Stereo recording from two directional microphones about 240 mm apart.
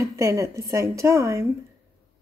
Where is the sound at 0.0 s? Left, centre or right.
Centre.